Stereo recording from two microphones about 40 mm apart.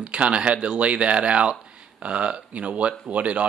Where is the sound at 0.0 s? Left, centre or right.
Right.